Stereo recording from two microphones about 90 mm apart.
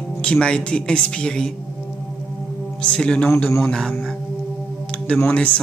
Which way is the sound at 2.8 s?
10° left (ahead or behind).